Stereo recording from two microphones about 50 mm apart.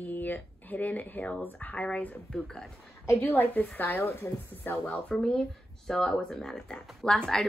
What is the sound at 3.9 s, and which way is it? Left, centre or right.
Speech, left.